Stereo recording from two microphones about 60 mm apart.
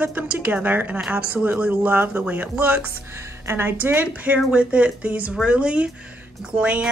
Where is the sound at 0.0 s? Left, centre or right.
Right.